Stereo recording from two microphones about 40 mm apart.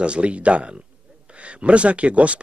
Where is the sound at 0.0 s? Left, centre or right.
Right.